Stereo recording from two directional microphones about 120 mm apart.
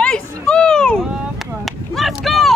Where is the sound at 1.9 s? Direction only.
Centre (ahead or behind).